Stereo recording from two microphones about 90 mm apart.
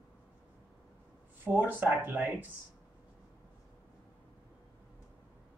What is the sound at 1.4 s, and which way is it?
Speech, 20° right (ahead or behind).